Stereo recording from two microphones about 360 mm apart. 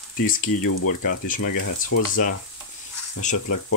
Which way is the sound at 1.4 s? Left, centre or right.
Left.